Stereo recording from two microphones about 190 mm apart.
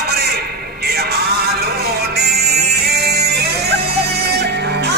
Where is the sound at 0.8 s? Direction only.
60° right (ahead or behind).